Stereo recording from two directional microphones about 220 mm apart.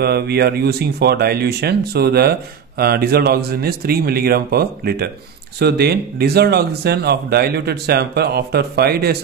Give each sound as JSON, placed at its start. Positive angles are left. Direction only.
{"t": 0.0, "sound": "speech", "side_deg": -45}